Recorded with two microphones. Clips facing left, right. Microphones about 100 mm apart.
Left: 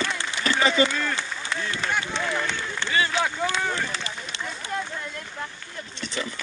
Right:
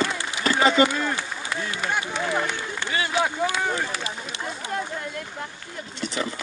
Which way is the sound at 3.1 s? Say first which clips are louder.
Right 2 dB; 15° right (ahead or behind).